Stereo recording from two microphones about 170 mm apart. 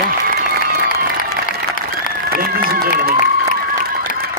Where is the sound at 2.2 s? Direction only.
60° right (ahead or behind).